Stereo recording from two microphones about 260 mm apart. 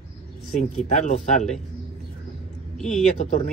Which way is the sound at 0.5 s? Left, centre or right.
Left.